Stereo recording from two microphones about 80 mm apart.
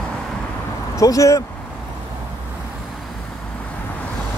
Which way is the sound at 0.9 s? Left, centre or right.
Left.